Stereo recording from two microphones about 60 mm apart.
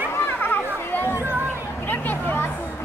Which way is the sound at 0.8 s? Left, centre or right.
Left.